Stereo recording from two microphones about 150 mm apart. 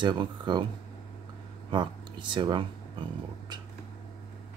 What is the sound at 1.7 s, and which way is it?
Speech, 30° right (ahead or behind).